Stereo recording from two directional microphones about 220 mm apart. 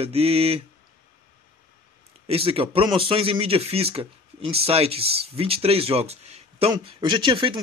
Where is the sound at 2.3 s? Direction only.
25° right (ahead or behind).